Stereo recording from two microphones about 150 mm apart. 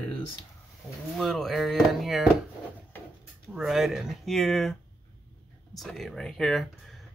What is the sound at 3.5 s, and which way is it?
Speech, centre (ahead or behind).